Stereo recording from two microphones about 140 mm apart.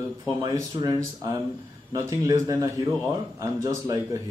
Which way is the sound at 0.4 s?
30° right (ahead or behind).